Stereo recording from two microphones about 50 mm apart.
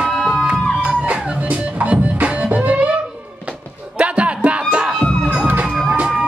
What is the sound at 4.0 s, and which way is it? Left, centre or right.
Music, right.